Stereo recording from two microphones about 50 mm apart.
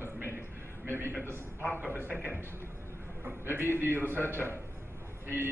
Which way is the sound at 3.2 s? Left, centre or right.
Right.